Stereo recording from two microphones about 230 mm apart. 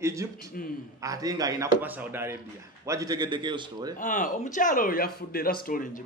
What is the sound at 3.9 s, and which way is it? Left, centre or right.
A man's voice, left.